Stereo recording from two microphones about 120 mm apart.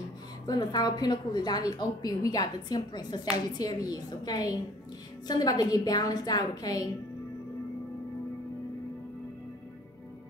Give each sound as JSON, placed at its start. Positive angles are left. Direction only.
{"t": 0.5, "sound": "a woman's voice", "side_deg": 35}